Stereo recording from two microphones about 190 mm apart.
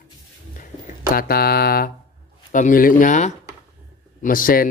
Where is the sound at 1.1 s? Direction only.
55° left (ahead or behind).